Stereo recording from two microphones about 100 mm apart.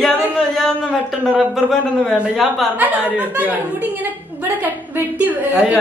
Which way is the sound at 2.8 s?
15° right (ahead or behind).